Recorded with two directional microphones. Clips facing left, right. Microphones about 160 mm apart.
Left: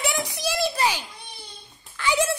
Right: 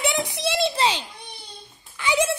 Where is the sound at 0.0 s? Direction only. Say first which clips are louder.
Right 2 dB; 25° right (ahead or behind).